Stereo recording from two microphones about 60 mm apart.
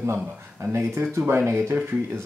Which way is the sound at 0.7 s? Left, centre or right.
Right.